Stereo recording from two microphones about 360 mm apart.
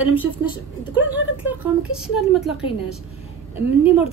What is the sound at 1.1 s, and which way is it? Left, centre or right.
Speech, centre.